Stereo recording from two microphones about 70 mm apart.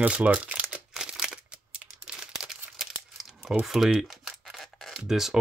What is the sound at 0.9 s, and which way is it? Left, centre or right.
Crumpling, centre.